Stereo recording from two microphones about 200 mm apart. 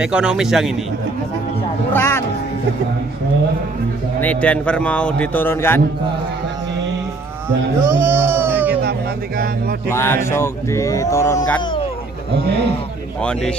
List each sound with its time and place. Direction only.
0.0 s a man's voice: 5° right (ahead or behind)
1.9 s speech: 10° left (ahead or behind)
4.2 s speech: 5° left (ahead or behind)
7.8 s a sound: 10° right (ahead or behind)
9.8 s speech: 10° left (ahead or behind)
13.2 s a man's voice: 5° left (ahead or behind)